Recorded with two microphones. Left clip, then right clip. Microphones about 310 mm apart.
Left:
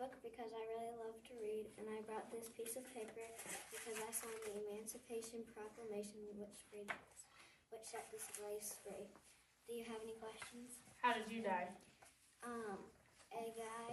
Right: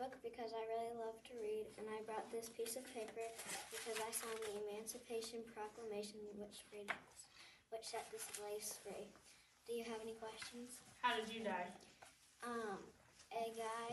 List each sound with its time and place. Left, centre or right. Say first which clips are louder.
0.0 s a woman's voice: right 2 dB; centre
12.4 s speech: right 2 dB; centre